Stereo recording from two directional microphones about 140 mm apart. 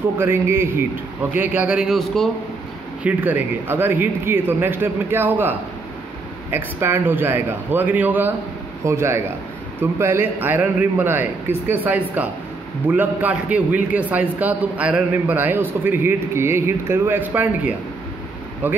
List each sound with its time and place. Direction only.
0.2 s a man's voice: 15° right (ahead or behind); by 2.3 s centre (ahead or behind)
3.0 s a man's voice: 10° right (ahead or behind)